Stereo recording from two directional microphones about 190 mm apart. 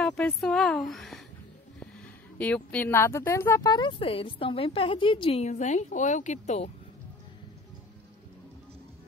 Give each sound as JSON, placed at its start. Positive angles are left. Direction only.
{"t": 0.0, "sound": "a woman's voice", "side_deg": 5}
{"t": 2.3, "sound": "speech", "side_deg": 5}